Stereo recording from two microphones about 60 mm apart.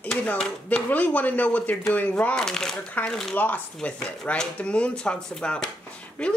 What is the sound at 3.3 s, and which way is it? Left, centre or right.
A woman's voice, left.